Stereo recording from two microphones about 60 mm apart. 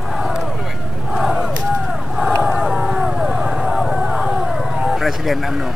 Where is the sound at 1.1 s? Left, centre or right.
Centre.